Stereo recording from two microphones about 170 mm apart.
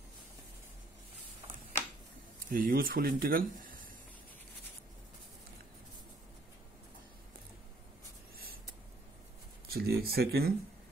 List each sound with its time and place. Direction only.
2.5 s speech: 55° right (ahead or behind)
9.7 s speech: 65° right (ahead or behind)